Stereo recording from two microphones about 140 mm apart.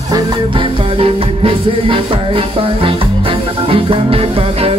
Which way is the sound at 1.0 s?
40° right (ahead or behind).